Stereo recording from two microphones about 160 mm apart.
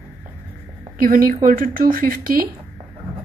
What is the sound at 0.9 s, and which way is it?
A woman's voice, 60° right (ahead or behind).